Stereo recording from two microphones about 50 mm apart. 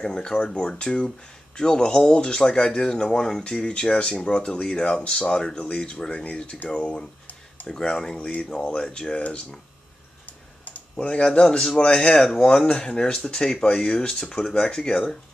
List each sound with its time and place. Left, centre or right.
0.0 s speech: centre
8.2 s speech: left
10.6 s speech: left